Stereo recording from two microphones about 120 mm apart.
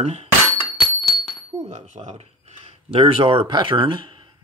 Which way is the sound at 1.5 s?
75° right (ahead or behind).